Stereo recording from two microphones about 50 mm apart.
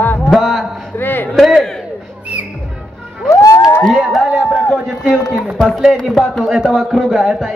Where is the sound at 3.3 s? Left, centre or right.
Left.